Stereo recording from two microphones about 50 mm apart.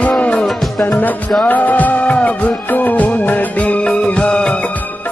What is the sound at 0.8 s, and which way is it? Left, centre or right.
Music, left.